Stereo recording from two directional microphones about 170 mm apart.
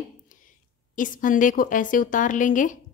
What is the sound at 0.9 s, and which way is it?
A woman's voice, 50° left (ahead or behind).